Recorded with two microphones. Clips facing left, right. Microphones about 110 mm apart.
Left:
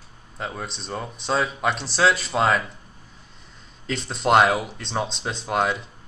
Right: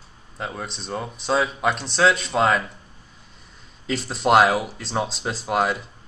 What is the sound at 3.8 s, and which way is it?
Speech, 5° right (ahead or behind).